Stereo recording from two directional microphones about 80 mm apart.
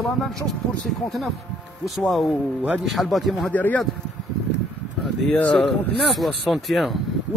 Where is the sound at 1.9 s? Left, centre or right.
Centre.